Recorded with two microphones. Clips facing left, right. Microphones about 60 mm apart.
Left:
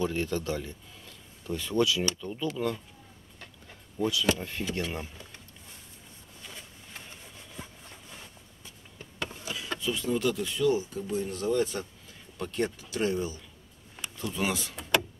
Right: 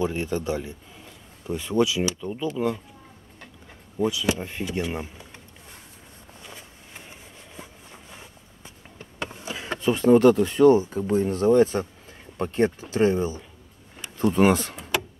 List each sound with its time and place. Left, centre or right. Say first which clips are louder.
0.0 s speech: right 4 dB; right
4.0 s speech: right 3 dB; centre
6.4 s a sound: right 1 dB; centre
8.6 s a sound: right 4 dB; right
12.9 s speech: right 6 dB; right
14.1 s speech: right 12 dB; right